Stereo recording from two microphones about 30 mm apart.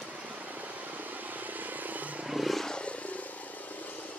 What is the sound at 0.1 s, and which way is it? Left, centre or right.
Vehicle, right.